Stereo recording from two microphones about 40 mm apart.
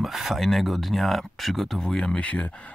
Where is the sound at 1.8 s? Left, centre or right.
Left.